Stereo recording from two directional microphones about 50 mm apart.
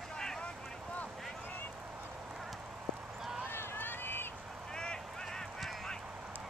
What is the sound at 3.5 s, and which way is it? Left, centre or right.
Run, left.